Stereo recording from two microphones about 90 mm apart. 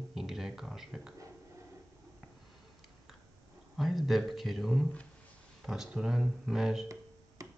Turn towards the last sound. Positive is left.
turn(degrees=-35)  # may be behind; listen again after turning